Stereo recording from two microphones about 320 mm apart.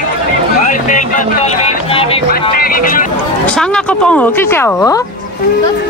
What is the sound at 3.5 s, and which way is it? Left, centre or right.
Speech, centre.